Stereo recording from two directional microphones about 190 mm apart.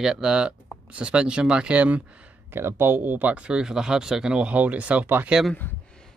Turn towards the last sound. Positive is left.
turn(degrees=-5)  # may be behind; listen again after turning